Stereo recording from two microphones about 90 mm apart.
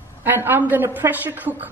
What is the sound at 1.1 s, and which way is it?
Speech, 20° right (ahead or behind).